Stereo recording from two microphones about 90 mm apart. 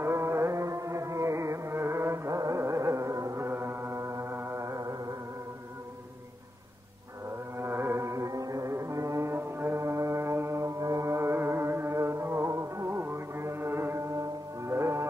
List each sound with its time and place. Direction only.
0.0 s music: 30° right (ahead or behind)
7.5 s music: 25° right (ahead or behind)